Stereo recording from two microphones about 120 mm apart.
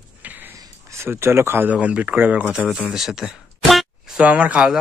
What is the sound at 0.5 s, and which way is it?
Speech, 25° right (ahead or behind).